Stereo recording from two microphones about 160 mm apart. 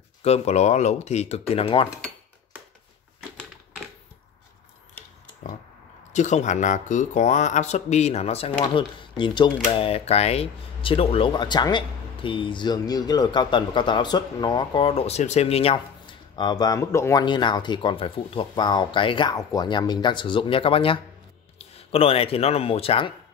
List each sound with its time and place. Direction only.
0.2 s speech: 40° left (ahead or behind)
6.1 s speech: 50° left (ahead or behind); by 17.2 s 20° left (ahead or behind)
17.2 s speech: 30° left (ahead or behind)